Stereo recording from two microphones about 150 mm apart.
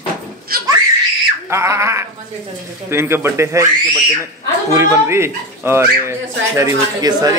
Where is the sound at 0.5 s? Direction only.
85° right.